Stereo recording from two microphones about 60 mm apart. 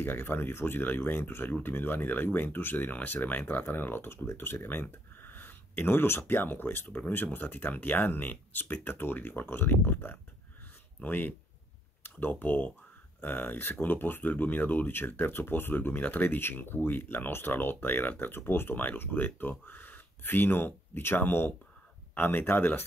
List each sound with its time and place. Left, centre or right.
0.0 s speech: left